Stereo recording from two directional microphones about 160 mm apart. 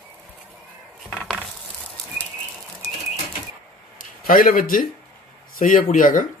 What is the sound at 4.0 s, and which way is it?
Speech, 60° left (ahead or behind).